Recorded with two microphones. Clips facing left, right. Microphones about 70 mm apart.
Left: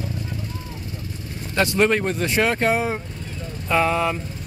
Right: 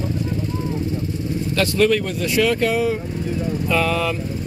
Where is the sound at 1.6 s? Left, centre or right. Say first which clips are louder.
Right 1 dB; left.